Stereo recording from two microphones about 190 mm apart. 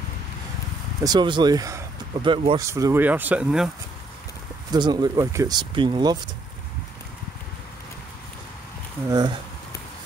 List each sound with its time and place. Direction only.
1.0 s speech: 25° right (ahead or behind); by 3.7 s 5° right (ahead or behind)
4.6 s speech: 20° right (ahead or behind)
9.1 s speech: 20° right (ahead or behind)